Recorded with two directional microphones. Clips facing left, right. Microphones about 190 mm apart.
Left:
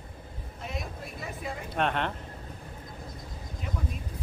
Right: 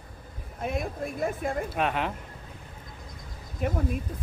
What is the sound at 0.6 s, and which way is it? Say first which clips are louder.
Speech: right 8 dB; 55° right (ahead or behind).